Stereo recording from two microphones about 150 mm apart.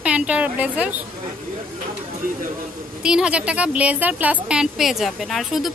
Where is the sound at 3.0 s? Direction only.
5° right (ahead or behind).